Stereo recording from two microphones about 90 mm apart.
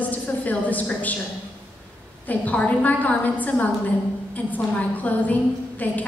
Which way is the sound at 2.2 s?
15° left (ahead or behind).